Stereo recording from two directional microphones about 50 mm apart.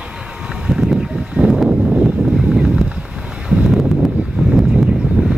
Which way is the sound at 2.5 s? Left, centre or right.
Centre.